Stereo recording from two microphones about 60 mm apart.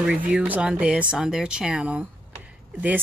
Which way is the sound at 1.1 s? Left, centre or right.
Centre.